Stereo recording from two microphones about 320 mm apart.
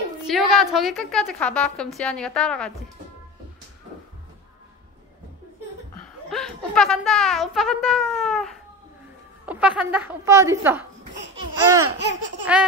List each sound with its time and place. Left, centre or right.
0.2 s a woman's voice: centre
6.3 s a woman's voice: centre
11.8 s laughter: right